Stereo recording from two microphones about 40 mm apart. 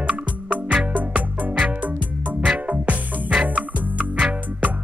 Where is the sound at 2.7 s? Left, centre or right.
Right.